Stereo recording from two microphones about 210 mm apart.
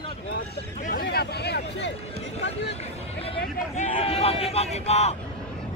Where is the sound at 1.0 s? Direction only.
50° left (ahead or behind).